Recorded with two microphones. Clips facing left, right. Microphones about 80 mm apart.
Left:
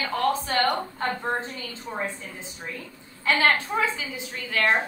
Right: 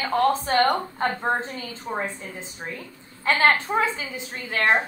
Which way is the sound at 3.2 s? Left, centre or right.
Right.